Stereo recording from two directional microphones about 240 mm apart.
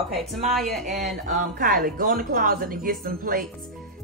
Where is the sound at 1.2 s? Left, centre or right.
Right.